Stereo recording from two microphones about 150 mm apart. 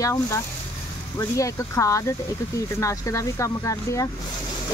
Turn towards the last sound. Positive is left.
turn(degrees=20)  # may be behind; listen again after turning